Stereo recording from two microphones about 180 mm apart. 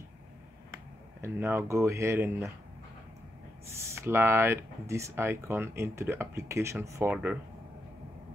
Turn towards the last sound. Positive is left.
turn(degrees=-10)  # may be behind; listen again after turning